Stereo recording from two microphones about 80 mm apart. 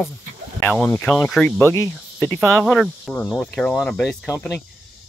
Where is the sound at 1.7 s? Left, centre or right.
Left.